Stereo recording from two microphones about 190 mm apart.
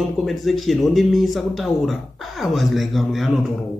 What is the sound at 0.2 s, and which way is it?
A man's voice, centre (ahead or behind).